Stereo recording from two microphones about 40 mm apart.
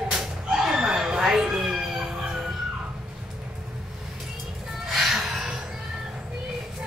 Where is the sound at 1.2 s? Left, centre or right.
Centre.